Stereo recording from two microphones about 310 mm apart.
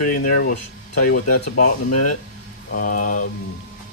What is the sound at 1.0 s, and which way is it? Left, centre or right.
Speech, left.